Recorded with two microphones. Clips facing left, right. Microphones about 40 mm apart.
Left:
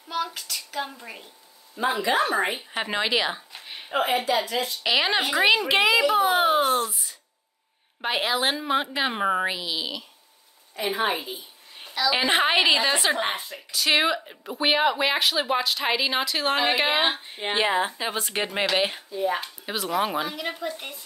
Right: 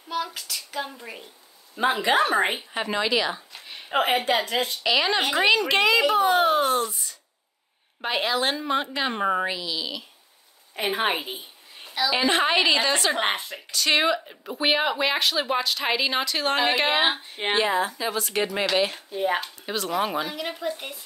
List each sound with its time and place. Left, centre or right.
0.1 s speech: centre
1.8 s speech: right
2.7 s speech: centre
3.9 s a woman's voice: right
4.8 s a woman's voice: centre
10.8 s speech: right
12.1 s a woman's voice: centre
13.2 s a woman's voice: right
13.7 s speech: centre
17.6 s a woman's voice: left
19.0 s speech: right
19.4 s speech: centre